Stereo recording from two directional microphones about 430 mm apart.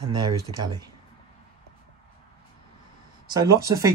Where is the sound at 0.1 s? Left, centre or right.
Centre.